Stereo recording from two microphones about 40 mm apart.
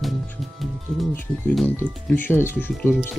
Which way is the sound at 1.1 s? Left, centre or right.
Left.